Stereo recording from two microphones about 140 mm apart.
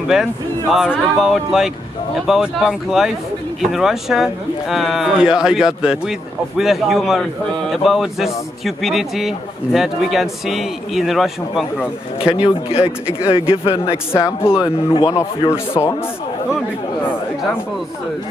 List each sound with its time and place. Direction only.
0.1 s a man's voice: 5° right (ahead or behind)
12.4 s a man's voice: 45° left (ahead or behind)
14.1 s a man's voice: 15° left (ahead or behind)